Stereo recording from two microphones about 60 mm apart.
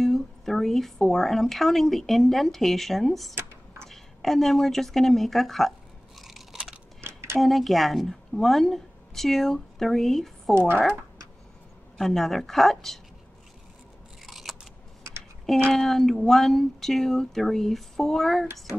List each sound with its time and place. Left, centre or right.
0.0 s speech: centre
6.1 s chewing: centre
7.0 s a sound: right
7.3 s speech: centre
12.0 s speech: centre
14.2 s scissors: centre
15.7 s speech: centre